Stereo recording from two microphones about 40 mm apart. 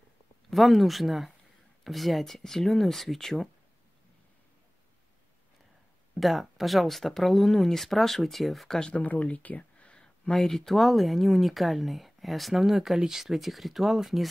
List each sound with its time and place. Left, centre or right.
0.5 s speech: centre
6.1 s speech: centre
8.6 s speech: centre
8.9 s a sound: left
10.3 s speech: centre